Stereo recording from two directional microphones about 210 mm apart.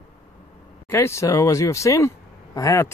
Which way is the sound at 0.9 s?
15° left (ahead or behind).